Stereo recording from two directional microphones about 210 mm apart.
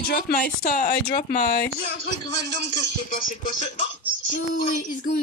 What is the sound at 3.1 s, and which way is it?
Speech, 40° left (ahead or behind).